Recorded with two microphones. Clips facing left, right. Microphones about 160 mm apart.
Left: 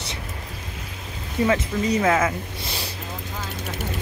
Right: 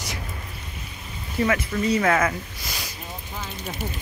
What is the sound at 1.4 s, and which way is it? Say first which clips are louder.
Speech: left 1 dB; 20° left (ahead or behind).